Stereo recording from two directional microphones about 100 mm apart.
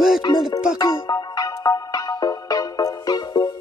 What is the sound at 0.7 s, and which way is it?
Music, 40° left (ahead or behind).